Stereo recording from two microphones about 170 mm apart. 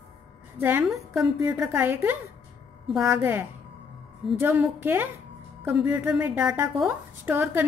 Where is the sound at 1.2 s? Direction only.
15° right (ahead or behind).